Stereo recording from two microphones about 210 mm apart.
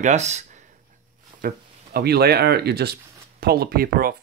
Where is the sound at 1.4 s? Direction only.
50° right (ahead or behind).